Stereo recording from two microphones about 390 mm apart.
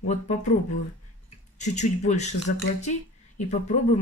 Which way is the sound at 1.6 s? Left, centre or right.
Centre.